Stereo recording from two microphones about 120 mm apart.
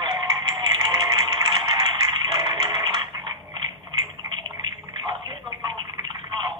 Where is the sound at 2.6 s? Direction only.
35° right (ahead or behind).